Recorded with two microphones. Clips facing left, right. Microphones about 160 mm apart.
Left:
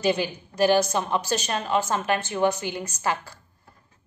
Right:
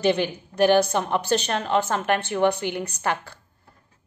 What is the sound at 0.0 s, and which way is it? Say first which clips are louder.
A woman's voice: right 2 dB; 60° right (ahead or behind).